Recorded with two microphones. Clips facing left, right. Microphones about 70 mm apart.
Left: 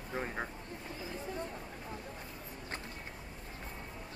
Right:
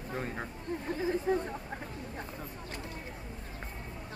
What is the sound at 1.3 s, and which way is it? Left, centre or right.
Speech, right.